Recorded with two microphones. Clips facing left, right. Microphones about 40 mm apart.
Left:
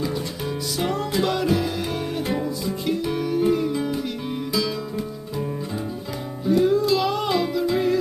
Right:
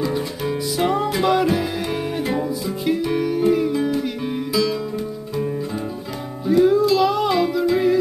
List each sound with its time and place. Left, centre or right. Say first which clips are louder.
0.7 s music: right 3 dB; centre
6.4 s music: right 4 dB; centre